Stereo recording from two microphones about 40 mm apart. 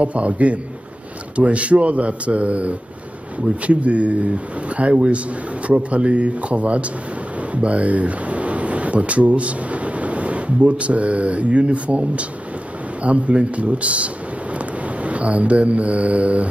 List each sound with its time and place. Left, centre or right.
0.0 s speech: right